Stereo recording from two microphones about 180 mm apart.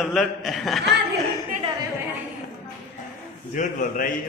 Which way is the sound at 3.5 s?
45° left (ahead or behind).